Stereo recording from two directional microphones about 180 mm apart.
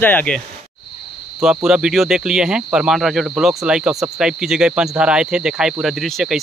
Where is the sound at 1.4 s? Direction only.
5° right (ahead or behind).